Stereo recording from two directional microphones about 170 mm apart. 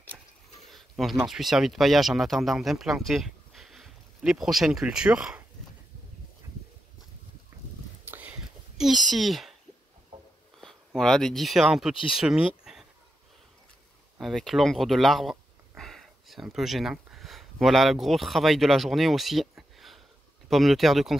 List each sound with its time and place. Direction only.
0.7 s speech: centre (ahead or behind)
8.0 s a sound: 10° right (ahead or behind)
10.6 s speech: 5° left (ahead or behind)
14.1 s speech: centre (ahead or behind)